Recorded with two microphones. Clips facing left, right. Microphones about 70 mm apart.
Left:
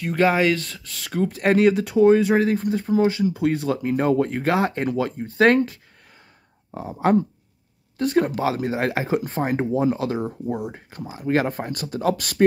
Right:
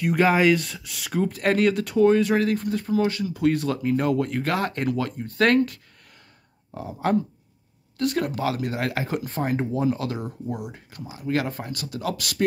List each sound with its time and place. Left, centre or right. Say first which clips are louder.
0.0 s speech: even; centre
1.3 s speech: left 5 dB; centre
6.7 s speech: left 4 dB; left